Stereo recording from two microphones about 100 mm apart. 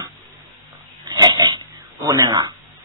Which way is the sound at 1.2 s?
45° right (ahead or behind).